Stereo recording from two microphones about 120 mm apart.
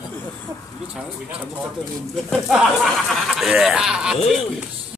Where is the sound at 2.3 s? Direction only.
Centre (ahead or behind).